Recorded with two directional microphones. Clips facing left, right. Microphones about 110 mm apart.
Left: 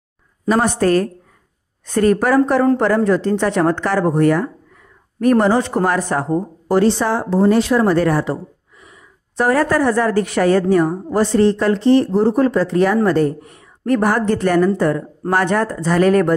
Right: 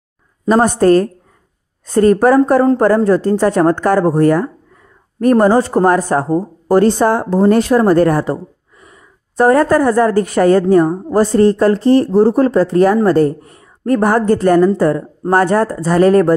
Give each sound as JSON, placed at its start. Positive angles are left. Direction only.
{"t": 0.5, "sound": "speech", "side_deg": -45}